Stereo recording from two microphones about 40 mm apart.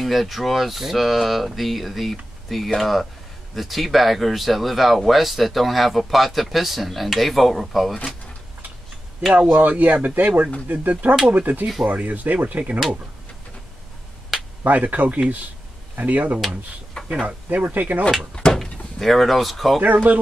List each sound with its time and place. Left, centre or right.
0.0 s speech: centre
9.5 s speech: right
14.6 s speech: right
17.1 s speech: right
17.5 s speech: right
18.4 s door: left
18.9 s speech: centre
19.8 s speech: right